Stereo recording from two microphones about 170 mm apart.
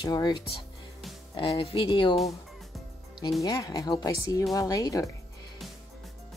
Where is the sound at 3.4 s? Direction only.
25° left (ahead or behind).